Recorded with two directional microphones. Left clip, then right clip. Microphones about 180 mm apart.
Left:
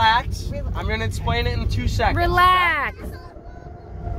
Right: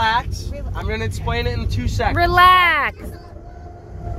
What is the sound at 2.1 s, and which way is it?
Speech, 20° right (ahead or behind).